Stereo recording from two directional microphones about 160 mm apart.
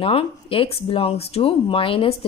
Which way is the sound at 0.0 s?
35° left (ahead or behind).